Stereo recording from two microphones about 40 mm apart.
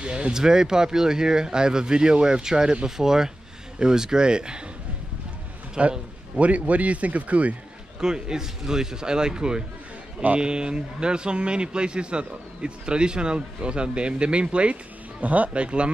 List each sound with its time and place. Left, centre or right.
0.0 s a man's voice: right
5.8 s a man's voice: right
8.0 s a man's voice: centre; by 15.6 s right
15.6 s a man's voice: right